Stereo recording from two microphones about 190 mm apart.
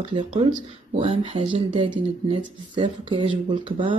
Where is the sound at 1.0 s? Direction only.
30° right (ahead or behind).